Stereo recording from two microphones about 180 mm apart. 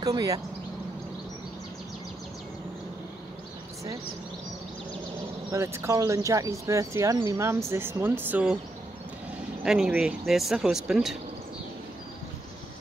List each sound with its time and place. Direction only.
0.0 s speech: 20° right (ahead or behind)
5.5 s speech: 15° right (ahead or behind)
9.6 s speech: 5° right (ahead or behind)